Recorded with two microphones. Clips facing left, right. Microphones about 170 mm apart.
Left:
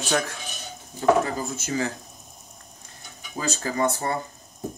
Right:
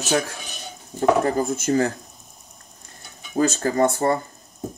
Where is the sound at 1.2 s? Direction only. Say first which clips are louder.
Right 8 dB; 50° right (ahead or behind).